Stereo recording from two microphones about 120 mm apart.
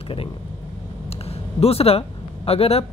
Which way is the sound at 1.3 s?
55° left (ahead or behind).